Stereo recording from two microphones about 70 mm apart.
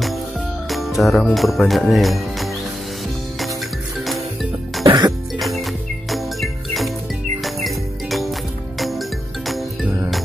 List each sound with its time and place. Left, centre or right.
0.7 s music: centre
1.3 s speech: centre
4.0 s music: centre
4.8 s cough: right
5.4 s music: centre